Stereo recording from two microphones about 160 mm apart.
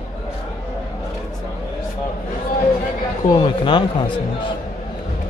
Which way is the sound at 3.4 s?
30° left (ahead or behind).